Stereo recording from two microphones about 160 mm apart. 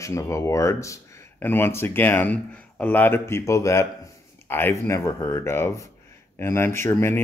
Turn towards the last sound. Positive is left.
turn(degrees=15)  # may be behind; listen again after turning